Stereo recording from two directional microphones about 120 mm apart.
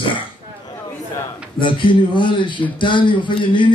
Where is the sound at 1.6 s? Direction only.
45° left (ahead or behind).